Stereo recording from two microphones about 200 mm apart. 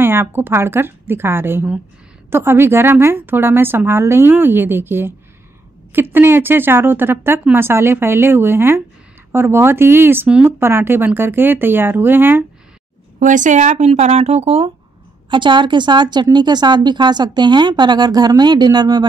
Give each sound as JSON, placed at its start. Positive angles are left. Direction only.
{"t": 0.0, "sound": "speech", "side_deg": -10}
{"t": 13.2, "sound": "a woman's voice", "side_deg": -40}